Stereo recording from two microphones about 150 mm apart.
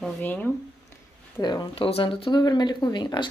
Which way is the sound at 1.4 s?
30° left (ahead or behind).